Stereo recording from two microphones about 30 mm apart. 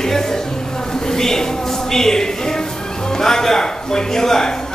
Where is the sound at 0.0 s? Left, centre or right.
Centre.